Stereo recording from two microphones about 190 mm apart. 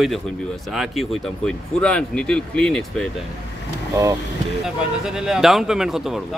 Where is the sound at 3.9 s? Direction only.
15° right (ahead or behind).